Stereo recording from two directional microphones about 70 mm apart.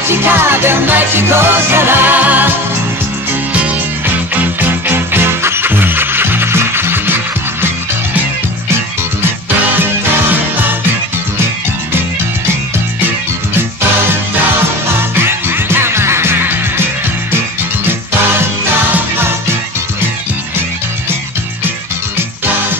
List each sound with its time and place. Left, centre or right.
0.1 s music: right
4.6 s music: right
15.2 s music: right